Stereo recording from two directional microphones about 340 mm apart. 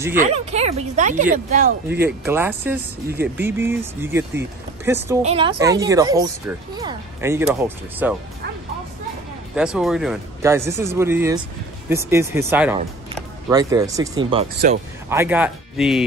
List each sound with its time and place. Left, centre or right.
0.2 s speech: centre
1.9 s speech: centre
9.6 s speech: centre